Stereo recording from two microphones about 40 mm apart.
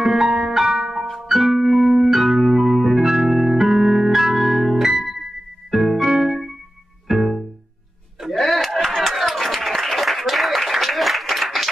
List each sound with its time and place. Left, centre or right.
0.0 s music: centre
1.3 s music: centre
2.0 s music: centre
5.7 s keyboard: centre
7.1 s music: centre
8.4 s clapping: centre